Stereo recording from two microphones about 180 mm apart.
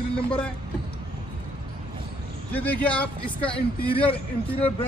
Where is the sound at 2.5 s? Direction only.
10° left (ahead or behind).